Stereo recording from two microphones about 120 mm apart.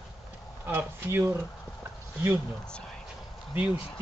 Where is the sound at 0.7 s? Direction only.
15° right (ahead or behind).